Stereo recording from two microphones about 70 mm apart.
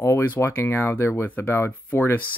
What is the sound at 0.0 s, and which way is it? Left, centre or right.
Speech, left.